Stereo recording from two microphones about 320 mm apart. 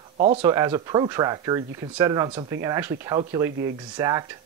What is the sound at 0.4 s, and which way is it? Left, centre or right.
Speech, centre.